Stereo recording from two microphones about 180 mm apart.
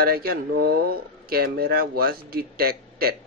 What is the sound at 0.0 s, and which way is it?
Speech, 55° right (ahead or behind).